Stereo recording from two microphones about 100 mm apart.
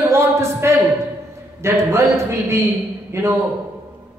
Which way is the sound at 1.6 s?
25° right (ahead or behind).